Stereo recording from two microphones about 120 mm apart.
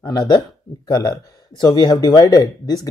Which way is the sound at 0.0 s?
35° left (ahead or behind).